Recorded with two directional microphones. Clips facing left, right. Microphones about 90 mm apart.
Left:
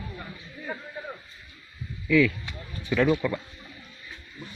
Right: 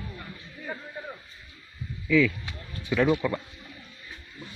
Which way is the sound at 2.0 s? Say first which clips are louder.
Left 1 dB; centre (ahead or behind).